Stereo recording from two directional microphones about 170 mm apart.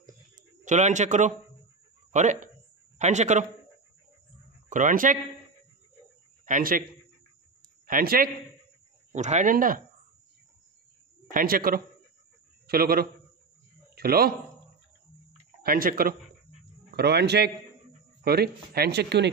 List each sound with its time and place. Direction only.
0.0 s a sound: 50° right (ahead or behind)
2.1 s speech: 45° right (ahead or behind)
4.6 s speech: 50° right (ahead or behind)
6.4 s a man's voice: 50° right (ahead or behind)
7.8 s a man's voice: 55° right (ahead or behind)
9.1 s speech: 45° right (ahead or behind)
11.3 s speech: 55° right (ahead or behind)
15.6 s speech: 55° right (ahead or behind)
16.9 s speech: 75° right (ahead or behind)